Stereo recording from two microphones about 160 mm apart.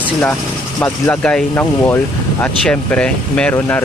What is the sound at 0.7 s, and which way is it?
Speech, 15° left (ahead or behind).